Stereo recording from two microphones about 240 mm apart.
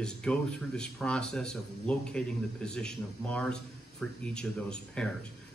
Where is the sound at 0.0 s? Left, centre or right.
Centre.